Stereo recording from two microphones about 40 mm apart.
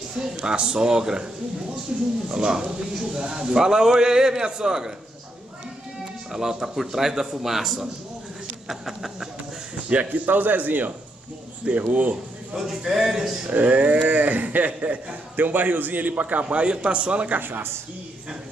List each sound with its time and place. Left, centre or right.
0.2 s a man's voice: centre
6.3 s a man's voice: centre
9.8 s a man's voice: right
11.9 s a man's voice: right
12.5 s a man's voice: centre
13.5 s a man's voice: right
15.3 s a man's voice: right
17.3 s speech: right